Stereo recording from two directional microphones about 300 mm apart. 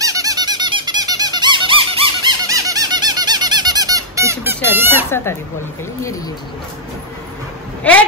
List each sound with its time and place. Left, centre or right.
0.0 s squeak: centre
7.8 s speech: centre